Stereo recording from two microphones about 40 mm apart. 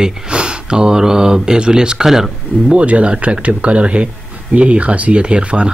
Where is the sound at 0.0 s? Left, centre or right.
Right.